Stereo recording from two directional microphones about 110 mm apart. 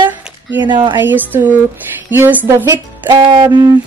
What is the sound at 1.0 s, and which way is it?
A woman's voice, 15° right (ahead or behind).